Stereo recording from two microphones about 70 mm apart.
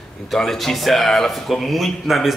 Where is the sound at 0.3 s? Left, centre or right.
Centre.